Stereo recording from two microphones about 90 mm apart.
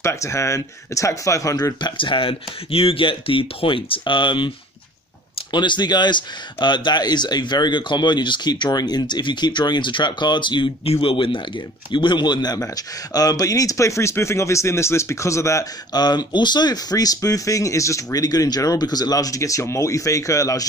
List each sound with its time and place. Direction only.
0.0 s speech: 35° left (ahead or behind)
1.8 s speech: 65° left (ahead or behind)
5.5 s speech: 55° left (ahead or behind)
12.5 s speech: 40° left (ahead or behind)
15.9 s speech: 50° left (ahead or behind)